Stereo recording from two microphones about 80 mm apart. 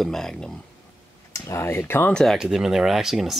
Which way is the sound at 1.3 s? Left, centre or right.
Left.